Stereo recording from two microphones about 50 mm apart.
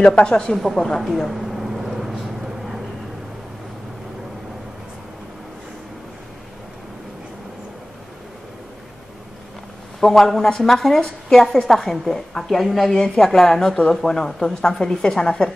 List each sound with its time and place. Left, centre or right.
0.0 s speech: centre
0.6 s a woman's voice: centre
1.0 s a sound: centre
9.9 s a woman's voice: centre